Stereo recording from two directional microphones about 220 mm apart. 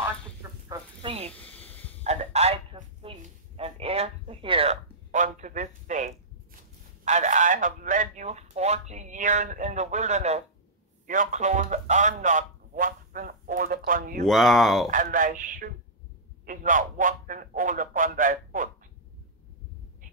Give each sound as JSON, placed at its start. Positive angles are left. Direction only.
{"t": 0.0, "sound": "chicken", "side_deg": -10}
{"t": 1.0, "sound": "speech", "side_deg": -25}
{"t": 1.3, "sound": "snake", "side_deg": 5}
{"t": 2.0, "sound": "a sound", "side_deg": -30}
{"t": 14.2, "sound": "speech", "side_deg": 0}
{"t": 14.9, "sound": "a sound", "side_deg": -35}